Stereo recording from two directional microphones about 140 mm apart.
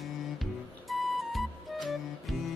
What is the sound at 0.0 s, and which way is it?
Music, centre (ahead or behind).